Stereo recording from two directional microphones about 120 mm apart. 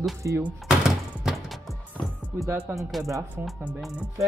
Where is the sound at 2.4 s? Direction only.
20° right (ahead or behind).